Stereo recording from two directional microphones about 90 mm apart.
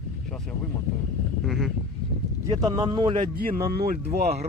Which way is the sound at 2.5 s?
50° right (ahead or behind).